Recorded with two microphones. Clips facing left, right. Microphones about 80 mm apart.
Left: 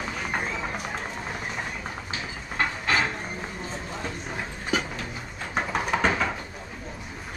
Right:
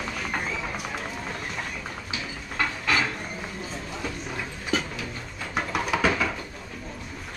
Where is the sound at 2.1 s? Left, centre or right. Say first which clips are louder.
Even; left.